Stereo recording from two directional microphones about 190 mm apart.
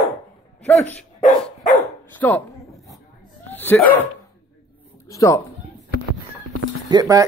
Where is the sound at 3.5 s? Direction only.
10° left (ahead or behind).